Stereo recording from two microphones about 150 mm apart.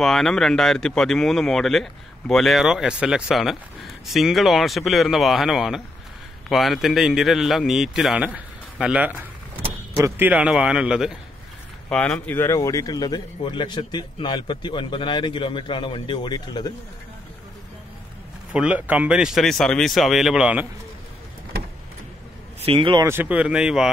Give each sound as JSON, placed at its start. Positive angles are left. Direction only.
{"t": 0.0, "sound": "speech", "side_deg": 0}
{"t": 11.9, "sound": "speech", "side_deg": 5}
{"t": 18.5, "sound": "speech", "side_deg": -10}
{"t": 22.6, "sound": "speech", "side_deg": -40}
{"t": 23.0, "sound": "speech", "side_deg": -10}